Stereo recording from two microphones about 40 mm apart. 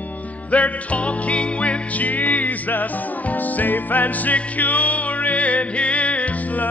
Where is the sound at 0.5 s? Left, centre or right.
Left.